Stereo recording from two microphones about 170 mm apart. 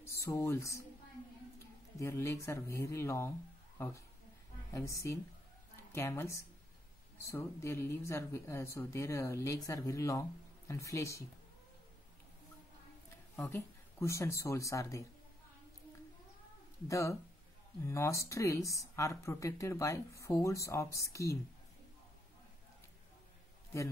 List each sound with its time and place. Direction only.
0.2 s speech: 15° left (ahead or behind)
2.0 s speech: 15° left (ahead or behind)
5.9 s speech: 15° left (ahead or behind)
13.4 s speech: 15° left (ahead or behind)
16.8 s speech: 20° left (ahead or behind)